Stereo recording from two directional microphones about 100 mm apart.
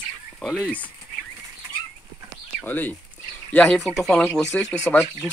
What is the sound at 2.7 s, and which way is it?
Speech, 20° left (ahead or behind).